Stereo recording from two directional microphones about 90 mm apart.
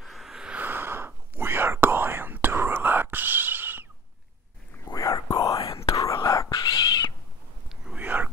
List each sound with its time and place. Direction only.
0.0 s a sound: centre (ahead or behind)
0.6 s whispering: 25° right (ahead or behind)
4.9 s whispering: 40° left (ahead or behind)
5.6 s whispering: 90° left
5.9 s whispering: 40° left (ahead or behind)
6.5 s whispering: 55° left (ahead or behind)
7.8 s a sound: 15° right (ahead or behind)